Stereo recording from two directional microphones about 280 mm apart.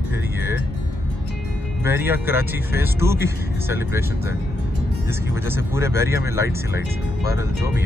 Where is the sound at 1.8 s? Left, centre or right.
Centre.